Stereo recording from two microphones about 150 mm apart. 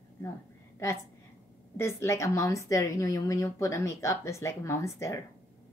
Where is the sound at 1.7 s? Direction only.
15° left (ahead or behind).